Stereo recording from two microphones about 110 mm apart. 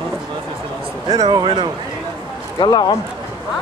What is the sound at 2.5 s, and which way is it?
Speech, 45° left (ahead or behind).